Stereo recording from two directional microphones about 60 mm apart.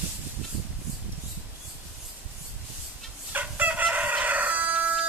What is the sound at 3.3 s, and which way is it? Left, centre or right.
Crowing, right.